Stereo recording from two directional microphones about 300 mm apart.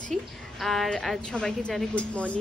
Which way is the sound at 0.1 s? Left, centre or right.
Centre.